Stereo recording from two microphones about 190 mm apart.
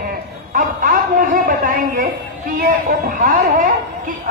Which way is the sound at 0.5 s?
45° right (ahead or behind).